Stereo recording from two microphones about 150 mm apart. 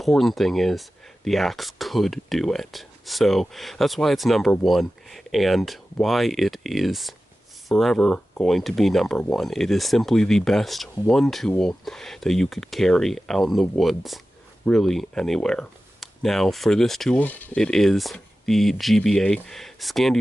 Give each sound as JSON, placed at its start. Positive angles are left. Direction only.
{"t": 0.0, "sound": "speech", "side_deg": 0}